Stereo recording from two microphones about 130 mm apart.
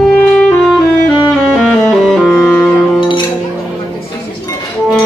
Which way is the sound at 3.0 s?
35° left (ahead or behind).